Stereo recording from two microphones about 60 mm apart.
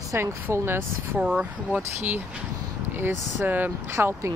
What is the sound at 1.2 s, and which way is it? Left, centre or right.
Speech, centre.